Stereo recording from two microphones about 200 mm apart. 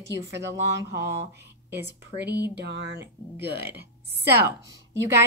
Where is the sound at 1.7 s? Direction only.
60° right (ahead or behind).